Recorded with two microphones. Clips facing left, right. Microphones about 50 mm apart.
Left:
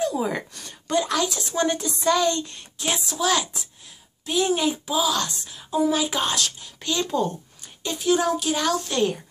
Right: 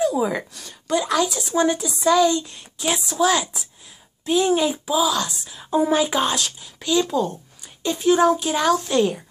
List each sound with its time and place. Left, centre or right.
0.0 s a woman's voice: centre
5.7 s speech: right
6.0 s speech: centre
8.0 s a child's voice: centre